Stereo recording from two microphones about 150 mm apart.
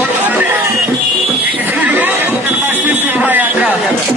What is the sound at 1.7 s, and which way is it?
Chatter, 10° right (ahead or behind).